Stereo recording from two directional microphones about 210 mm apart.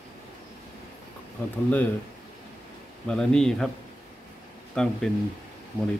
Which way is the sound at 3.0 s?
5° left (ahead or behind).